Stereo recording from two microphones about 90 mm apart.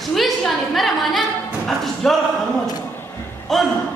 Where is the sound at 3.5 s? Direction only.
Centre (ahead or behind).